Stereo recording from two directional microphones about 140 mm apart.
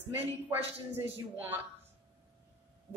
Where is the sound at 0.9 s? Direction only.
15° right (ahead or behind).